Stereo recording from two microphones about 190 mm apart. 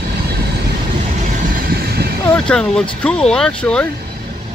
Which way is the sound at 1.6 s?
55° right (ahead or behind).